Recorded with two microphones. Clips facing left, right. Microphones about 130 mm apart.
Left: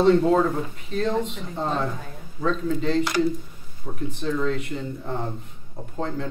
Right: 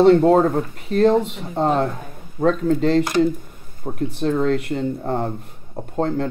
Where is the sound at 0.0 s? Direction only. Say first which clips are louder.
Right 5 dB; 55° right (ahead or behind).